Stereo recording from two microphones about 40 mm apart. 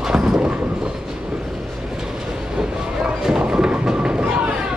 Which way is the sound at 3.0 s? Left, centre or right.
Right.